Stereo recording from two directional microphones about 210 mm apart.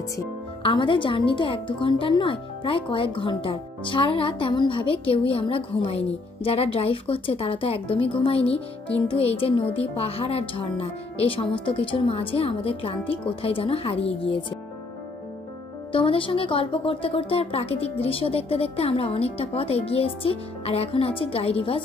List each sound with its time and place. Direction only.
0.6 s a woman's voice: 25° left (ahead or behind)
15.9 s a woman's voice: 25° left (ahead or behind)